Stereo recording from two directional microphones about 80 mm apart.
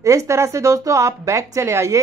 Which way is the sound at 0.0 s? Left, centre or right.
Right.